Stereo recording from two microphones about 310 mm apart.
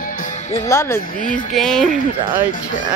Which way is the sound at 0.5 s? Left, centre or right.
Centre.